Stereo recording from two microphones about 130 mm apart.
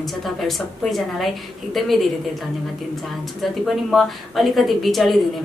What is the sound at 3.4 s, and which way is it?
A woman's voice, centre (ahead or behind).